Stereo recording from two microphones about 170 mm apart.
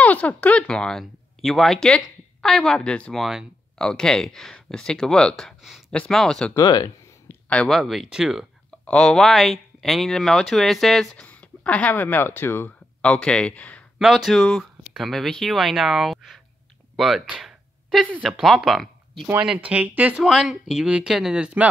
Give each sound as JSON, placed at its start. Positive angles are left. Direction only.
{"t": 0.0, "sound": "speech", "side_deg": 10}
{"t": 6.5, "sound": "speech", "side_deg": 20}
{"t": 7.2, "sound": "speech", "side_deg": 5}